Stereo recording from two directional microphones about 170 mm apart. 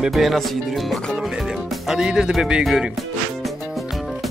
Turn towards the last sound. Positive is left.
turn(degrees=0)  # may be behind; listen again after turning